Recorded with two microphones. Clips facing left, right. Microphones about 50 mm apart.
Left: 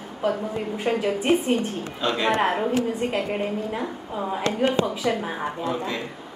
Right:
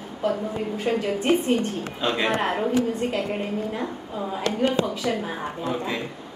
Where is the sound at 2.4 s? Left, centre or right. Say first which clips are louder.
Left 1 dB; centre.